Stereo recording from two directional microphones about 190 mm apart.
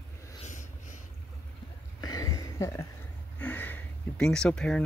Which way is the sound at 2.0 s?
20° left (ahead or behind).